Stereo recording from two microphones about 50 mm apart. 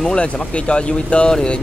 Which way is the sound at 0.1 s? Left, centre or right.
Left.